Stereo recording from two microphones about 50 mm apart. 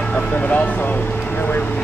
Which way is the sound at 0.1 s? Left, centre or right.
Left.